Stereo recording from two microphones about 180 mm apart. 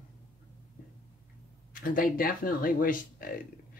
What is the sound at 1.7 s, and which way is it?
A man's voice, 50° left (ahead or behind).